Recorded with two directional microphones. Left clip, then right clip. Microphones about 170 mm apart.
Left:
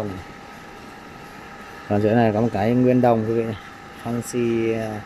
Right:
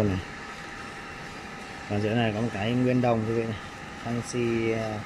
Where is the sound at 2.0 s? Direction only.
20° left (ahead or behind).